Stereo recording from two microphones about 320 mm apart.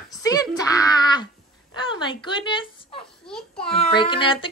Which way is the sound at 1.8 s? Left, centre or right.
Centre.